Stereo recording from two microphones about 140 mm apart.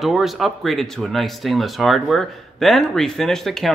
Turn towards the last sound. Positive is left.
turn(degrees=0)  # may be behind; listen again after turning